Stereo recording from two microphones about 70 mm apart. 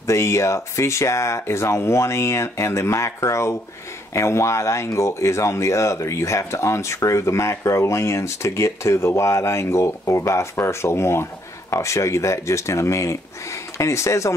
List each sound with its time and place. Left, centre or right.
0.0 s speech: left